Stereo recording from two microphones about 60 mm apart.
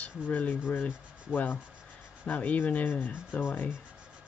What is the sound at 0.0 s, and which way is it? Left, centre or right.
Speech, left.